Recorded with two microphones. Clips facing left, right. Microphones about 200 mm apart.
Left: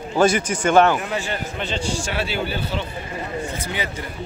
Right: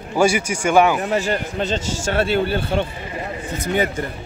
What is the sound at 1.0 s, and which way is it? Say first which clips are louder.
A man's voice: right 5 dB; 40° right (ahead or behind).